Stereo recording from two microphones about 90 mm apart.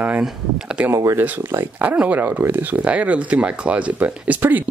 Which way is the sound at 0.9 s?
35° right (ahead or behind).